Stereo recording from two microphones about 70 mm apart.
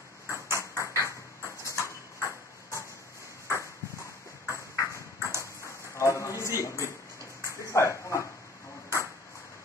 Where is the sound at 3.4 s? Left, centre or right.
Left.